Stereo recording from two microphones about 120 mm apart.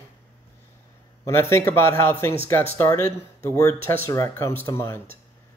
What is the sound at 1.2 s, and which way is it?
Speech, 20° left (ahead or behind).